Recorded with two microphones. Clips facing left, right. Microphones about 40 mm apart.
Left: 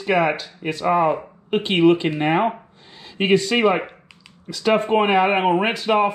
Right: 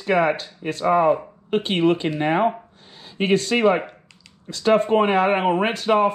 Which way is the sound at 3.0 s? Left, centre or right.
Left.